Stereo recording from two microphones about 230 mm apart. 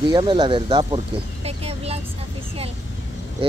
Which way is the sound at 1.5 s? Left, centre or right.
Right.